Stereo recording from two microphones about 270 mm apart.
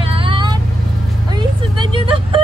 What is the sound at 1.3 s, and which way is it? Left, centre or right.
Vehicle, centre.